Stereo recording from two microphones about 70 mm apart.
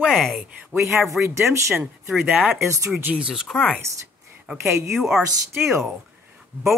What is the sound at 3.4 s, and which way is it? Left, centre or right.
Speech, centre.